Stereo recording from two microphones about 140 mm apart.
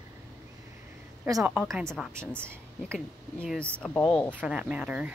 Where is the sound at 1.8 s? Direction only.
5° left (ahead or behind).